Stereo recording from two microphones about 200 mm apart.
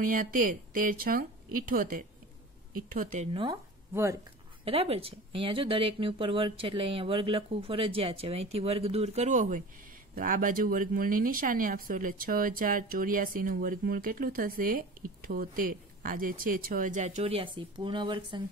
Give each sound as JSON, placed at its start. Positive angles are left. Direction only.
{"t": 0.0, "sound": "speech", "side_deg": -45}
{"t": 3.9, "sound": "speech", "side_deg": -15}
{"t": 4.6, "sound": "speech", "side_deg": -30}